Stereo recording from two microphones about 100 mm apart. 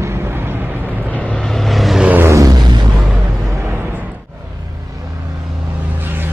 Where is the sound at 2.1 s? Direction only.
25° right (ahead or behind); by 2.9 s 45° right (ahead or behind).